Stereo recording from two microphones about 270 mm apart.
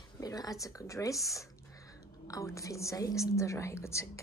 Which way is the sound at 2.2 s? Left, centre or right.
Centre.